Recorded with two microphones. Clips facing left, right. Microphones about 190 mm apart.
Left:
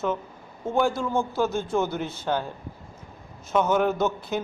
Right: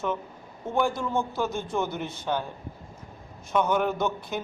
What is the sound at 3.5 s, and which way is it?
Speech, 5° left (ahead or behind).